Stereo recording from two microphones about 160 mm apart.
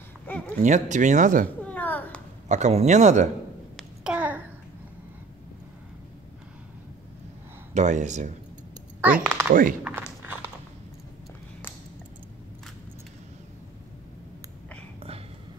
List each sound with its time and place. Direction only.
0.6 s speech: 50° right (ahead or behind)
1.6 s a sound: 10° left (ahead or behind)
2.4 s speech: 45° right (ahead or behind)
3.7 s babbling: 5° right (ahead or behind)
7.7 s speech: 50° right (ahead or behind)
9.0 s speech: 10° right (ahead or behind)
9.5 s speech: 60° right (ahead or behind)